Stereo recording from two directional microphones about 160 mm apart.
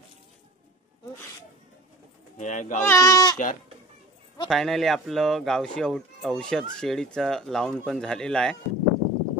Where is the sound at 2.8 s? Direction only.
20° left (ahead or behind).